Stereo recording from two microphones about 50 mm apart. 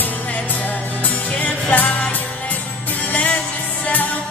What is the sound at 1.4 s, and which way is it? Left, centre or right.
Music, left.